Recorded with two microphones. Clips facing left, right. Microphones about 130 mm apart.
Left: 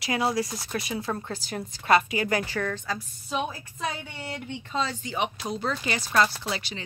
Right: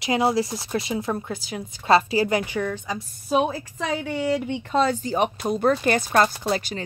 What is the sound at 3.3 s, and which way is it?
A woman's voice, 65° right (ahead or behind).